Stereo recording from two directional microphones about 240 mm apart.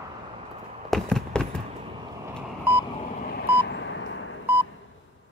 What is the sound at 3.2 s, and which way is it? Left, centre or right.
Telephone dialing, left.